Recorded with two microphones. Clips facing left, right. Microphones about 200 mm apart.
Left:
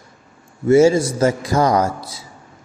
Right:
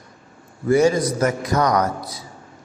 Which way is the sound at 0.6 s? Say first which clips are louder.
Left 4 dB; 25° left (ahead or behind).